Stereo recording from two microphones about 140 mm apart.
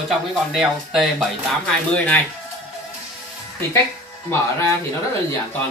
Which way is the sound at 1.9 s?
10° left (ahead or behind).